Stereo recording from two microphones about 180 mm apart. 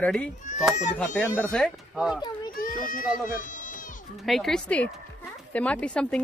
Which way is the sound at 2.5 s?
50° left (ahead or behind).